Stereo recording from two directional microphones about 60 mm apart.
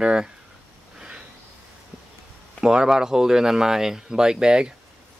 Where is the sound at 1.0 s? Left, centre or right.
Centre.